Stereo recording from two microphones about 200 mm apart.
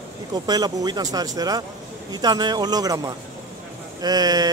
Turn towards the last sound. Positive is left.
turn(degrees=-20)  # may be behind; listen again after turning